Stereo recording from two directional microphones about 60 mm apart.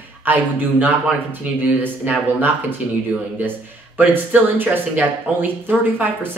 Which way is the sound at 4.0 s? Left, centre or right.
Right.